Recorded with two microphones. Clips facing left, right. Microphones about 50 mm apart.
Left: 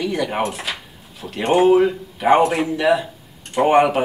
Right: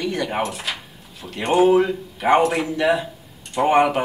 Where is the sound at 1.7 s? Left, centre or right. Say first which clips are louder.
Left 2 dB; centre.